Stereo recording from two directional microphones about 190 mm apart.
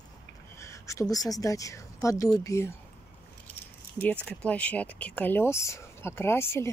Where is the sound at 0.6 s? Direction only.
15° left (ahead or behind).